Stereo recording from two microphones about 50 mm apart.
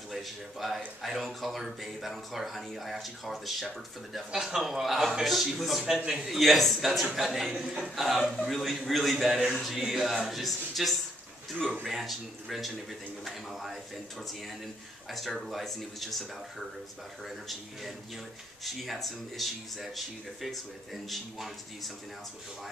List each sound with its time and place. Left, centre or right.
0.1 s speech: centre
15.0 s speech: centre